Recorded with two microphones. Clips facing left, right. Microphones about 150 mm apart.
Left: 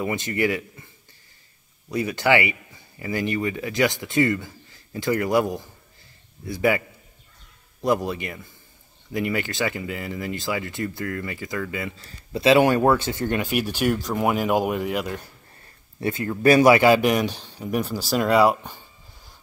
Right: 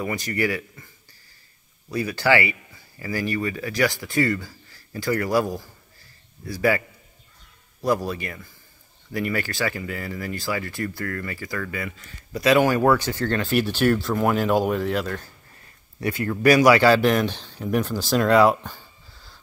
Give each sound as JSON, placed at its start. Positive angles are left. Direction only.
{"t": 0.0, "sound": "speech", "side_deg": 20}
{"t": 1.9, "sound": "speech", "side_deg": 20}
{"t": 7.8, "sound": "speech", "side_deg": 20}
{"t": 16.0, "sound": "speech", "side_deg": 20}